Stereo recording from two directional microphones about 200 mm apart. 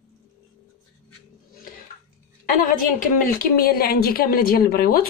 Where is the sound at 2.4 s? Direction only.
45° left (ahead or behind).